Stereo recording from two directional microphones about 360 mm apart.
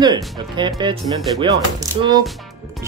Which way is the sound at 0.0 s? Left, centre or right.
Centre.